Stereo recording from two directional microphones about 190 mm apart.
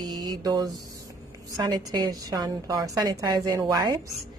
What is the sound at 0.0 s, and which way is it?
Mantra, 20° right (ahead or behind).